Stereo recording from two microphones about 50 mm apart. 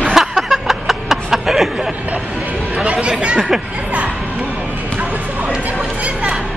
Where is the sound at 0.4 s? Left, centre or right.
Centre.